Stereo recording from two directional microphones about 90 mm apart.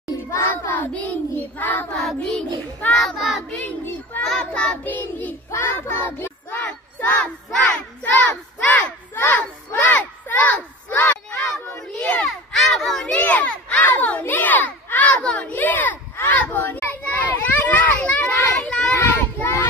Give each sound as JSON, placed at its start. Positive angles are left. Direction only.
{"t": 0.3, "sound": "child singing", "side_deg": 25}
{"t": 2.0, "sound": "child singing", "side_deg": 5}
{"t": 3.5, "sound": "a child's voice", "side_deg": 20}
{"t": 4.2, "sound": "child singing", "side_deg": 10}
{"t": 8.6, "sound": "a sound", "side_deg": 20}
{"t": 11.5, "sound": "a sound", "side_deg": 10}
{"t": 17.0, "sound": "children playing", "side_deg": 20}
{"t": 19.3, "sound": "child singing", "side_deg": 30}